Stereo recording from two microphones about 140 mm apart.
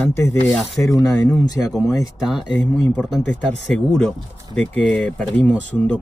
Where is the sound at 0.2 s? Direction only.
20° left (ahead or behind).